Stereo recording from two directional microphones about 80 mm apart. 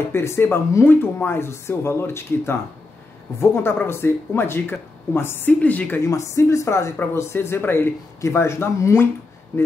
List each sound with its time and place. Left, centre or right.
0.1 s speech: left
6.0 s speech: left